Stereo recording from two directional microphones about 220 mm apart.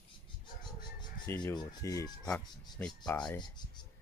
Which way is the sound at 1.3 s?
15° left (ahead or behind).